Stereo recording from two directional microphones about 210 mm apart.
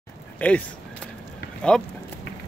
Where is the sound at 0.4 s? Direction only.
5° left (ahead or behind).